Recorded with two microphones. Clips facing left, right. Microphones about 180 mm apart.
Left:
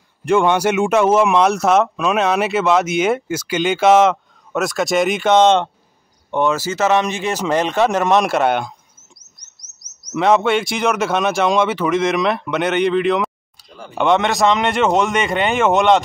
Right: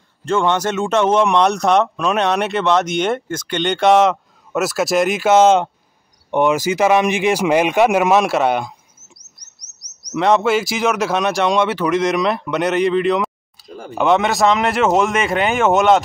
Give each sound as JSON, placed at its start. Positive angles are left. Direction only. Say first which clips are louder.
{"t": 0.2, "sound": "speech", "louder": "left 3 dB", "side_deg": 15}
{"t": 6.3, "sound": "speech", "louder": "right 3 dB", "side_deg": -15}
{"t": 10.1, "sound": "speech", "louder": "even", "side_deg": 0}
{"t": 13.7, "sound": "a sound", "louder": "right 5 dB", "side_deg": -45}
{"t": 13.9, "sound": "speech", "louder": "even", "side_deg": 0}